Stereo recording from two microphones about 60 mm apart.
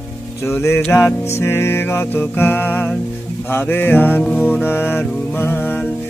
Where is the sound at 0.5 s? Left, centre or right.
Left.